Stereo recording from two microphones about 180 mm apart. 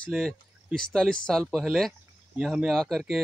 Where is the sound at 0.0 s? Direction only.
5° left (ahead or behind).